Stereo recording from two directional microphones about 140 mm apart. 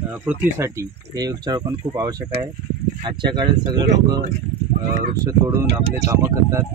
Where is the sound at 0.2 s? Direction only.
15° right (ahead or behind); by 4.2 s 30° right (ahead or behind).